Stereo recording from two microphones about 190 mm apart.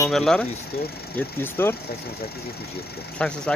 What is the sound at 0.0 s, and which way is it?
Speech, centre (ahead or behind).